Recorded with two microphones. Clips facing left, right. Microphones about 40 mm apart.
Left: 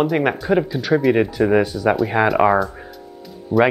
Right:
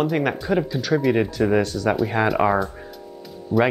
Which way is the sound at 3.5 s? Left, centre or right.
Left.